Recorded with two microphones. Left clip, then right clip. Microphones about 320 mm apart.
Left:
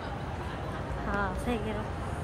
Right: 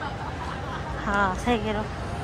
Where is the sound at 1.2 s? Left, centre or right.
Centre.